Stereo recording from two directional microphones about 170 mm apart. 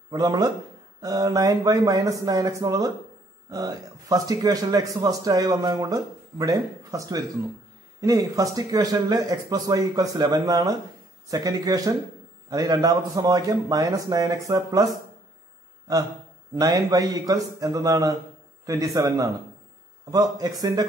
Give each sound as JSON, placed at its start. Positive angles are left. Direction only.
{"t": 0.1, "sound": "a man's voice", "side_deg": -20}
{"t": 16.5, "sound": "a man's voice", "side_deg": -20}